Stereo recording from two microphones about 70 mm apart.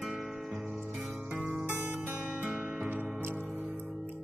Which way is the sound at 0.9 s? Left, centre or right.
Right.